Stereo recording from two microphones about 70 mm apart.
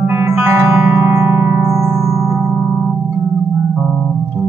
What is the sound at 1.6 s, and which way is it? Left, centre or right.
Music, right.